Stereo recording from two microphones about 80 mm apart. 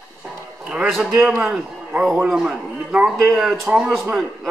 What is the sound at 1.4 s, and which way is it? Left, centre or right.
Speech, centre.